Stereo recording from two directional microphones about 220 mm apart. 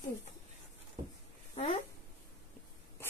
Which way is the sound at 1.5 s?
30° left (ahead or behind).